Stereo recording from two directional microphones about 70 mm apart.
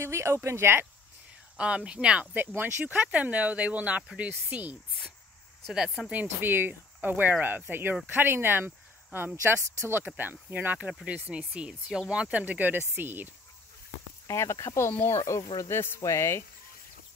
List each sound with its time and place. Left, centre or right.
0.0 s speech: right
1.6 s speech: centre
2.3 s speech: right
5.9 s speech: centre
6.2 s speech: right
14.2 s speech: left